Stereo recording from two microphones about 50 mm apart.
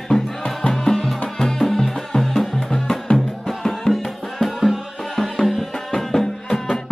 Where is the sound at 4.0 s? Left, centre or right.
Centre.